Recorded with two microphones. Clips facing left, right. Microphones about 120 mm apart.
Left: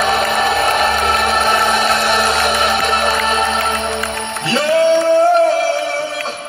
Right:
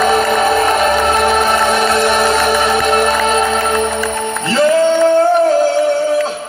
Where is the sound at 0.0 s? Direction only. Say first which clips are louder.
Right 3 dB; 45° right (ahead or behind).